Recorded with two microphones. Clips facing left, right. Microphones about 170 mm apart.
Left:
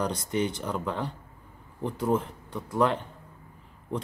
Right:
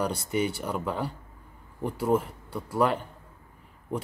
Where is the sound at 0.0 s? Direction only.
5° right (ahead or behind).